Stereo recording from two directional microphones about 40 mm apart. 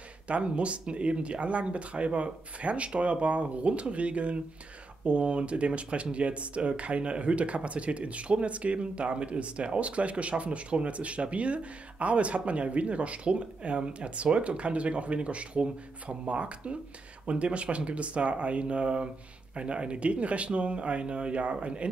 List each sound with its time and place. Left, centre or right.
0.3 s speech: right